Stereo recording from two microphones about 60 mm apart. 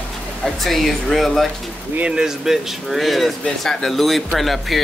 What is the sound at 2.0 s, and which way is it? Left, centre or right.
Speech, centre.